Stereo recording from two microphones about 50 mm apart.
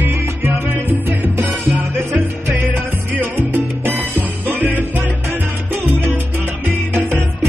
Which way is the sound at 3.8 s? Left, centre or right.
Right.